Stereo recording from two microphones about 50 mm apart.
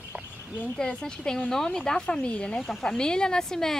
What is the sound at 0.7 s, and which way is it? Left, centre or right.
Speech, centre.